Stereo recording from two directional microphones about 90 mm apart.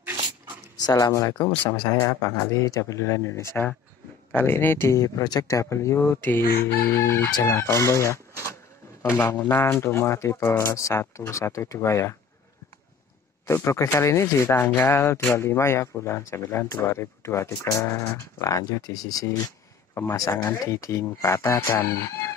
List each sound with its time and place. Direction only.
0.8 s speech: 50° left (ahead or behind); by 3.6 s 30° left (ahead or behind)
4.3 s speech: 20° left (ahead or behind)
6.9 s chicken: 25° left (ahead or behind)
7.4 s speech: 30° left (ahead or behind)
13.5 s speech: 35° left (ahead or behind)
14.6 s speech: 20° left (ahead or behind); by 19.5 s 45° left (ahead or behind)
19.9 s speech: 25° left (ahead or behind)